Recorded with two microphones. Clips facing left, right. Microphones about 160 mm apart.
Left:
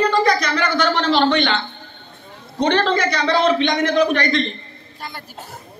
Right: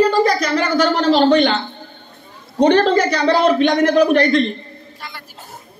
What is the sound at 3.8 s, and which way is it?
Speech, 55° right (ahead or behind).